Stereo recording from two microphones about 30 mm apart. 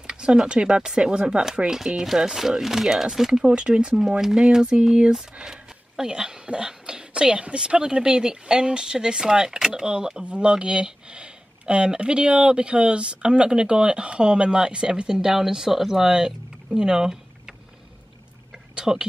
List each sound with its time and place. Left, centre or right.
0.1 s speech: right
3.4 s speech: right; by 16.1 s centre
16.1 s a sound: right
18.8 s speech: right